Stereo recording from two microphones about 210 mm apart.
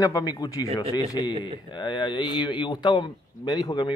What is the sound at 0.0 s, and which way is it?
Speech, 15° left (ahead or behind).